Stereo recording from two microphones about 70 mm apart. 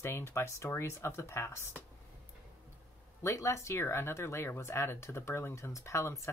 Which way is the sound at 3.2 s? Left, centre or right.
Left.